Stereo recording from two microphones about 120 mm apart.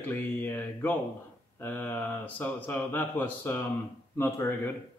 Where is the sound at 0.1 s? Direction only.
15° left (ahead or behind).